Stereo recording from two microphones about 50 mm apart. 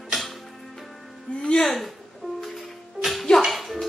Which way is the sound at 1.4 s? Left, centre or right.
Centre.